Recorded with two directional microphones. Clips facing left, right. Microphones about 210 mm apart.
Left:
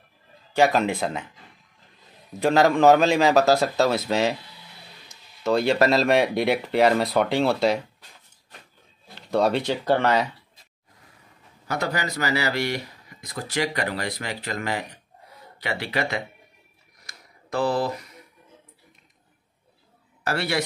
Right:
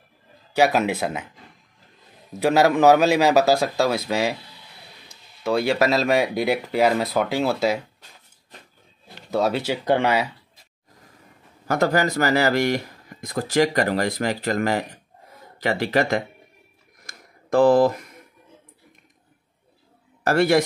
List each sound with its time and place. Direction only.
0.6 s speech: 5° right (ahead or behind)
2.4 s speech: 5° right (ahead or behind)
5.4 s speech: 10° right (ahead or behind)
9.3 s speech: 5° right (ahead or behind)
11.6 s speech: 45° right (ahead or behind)
17.0 s a sound: 50° right (ahead or behind)
20.2 s speech: 45° right (ahead or behind)